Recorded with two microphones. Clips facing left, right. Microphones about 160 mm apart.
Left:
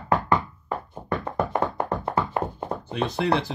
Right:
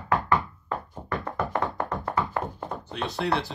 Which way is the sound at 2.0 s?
20° left (ahead or behind).